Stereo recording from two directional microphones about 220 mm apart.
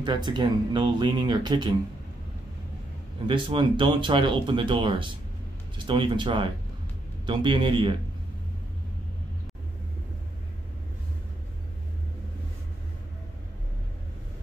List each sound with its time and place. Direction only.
0.0 s speech: 20° right (ahead or behind)
3.3 s speech: 20° right (ahead or behind)